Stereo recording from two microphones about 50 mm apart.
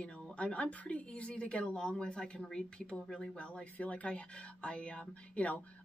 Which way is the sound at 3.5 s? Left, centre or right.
Left.